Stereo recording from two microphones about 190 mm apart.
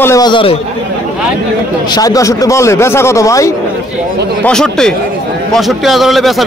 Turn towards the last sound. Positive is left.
turn(degrees=0)  # may be behind; listen again after turning